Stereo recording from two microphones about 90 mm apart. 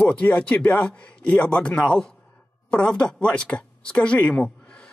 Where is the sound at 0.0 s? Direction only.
15° left (ahead or behind).